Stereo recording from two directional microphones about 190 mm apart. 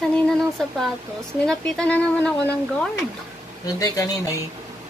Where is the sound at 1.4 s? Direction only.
5° left (ahead or behind).